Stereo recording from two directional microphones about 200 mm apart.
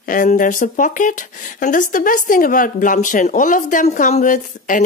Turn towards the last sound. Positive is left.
turn(degrees=40)  # may be behind; listen again after turning